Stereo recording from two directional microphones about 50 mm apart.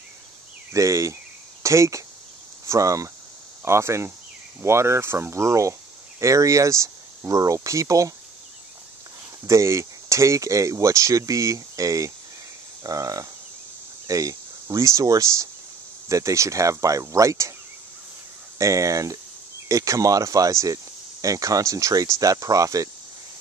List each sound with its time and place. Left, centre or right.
0.7 s speech: right
3.6 s speech: right
9.5 s speech: right
14.1 s speech: right
18.6 s speech: right